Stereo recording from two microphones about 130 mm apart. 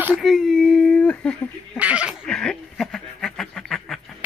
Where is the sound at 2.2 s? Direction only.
5° left (ahead or behind).